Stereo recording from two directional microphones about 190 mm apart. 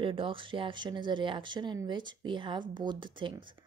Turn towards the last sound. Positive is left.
turn(degrees=-25)  # may be behind; listen again after turning